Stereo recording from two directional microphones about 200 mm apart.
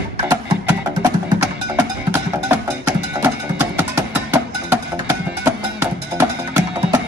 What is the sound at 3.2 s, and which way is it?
Music, 10° right (ahead or behind).